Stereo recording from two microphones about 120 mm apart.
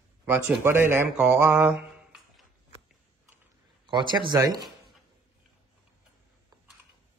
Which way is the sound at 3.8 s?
40° right (ahead or behind).